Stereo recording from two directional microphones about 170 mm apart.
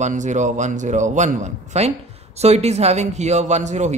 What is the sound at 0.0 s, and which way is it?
A man's voice, 45° right (ahead or behind).